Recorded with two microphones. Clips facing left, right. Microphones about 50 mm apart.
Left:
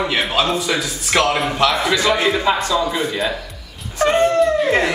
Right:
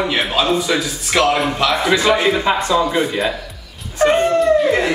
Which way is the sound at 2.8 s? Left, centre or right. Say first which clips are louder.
Right 3 dB; centre.